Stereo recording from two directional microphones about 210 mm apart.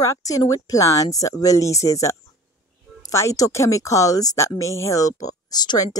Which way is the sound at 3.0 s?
15° left (ahead or behind).